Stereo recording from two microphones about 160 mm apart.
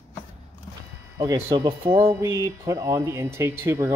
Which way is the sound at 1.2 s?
25° right (ahead or behind).